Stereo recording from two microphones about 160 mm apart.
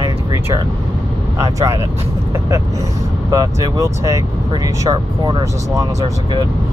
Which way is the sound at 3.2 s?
20° right (ahead or behind).